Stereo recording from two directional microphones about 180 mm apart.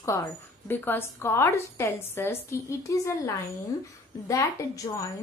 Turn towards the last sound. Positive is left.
turn(degrees=20)  # may be behind; listen again after turning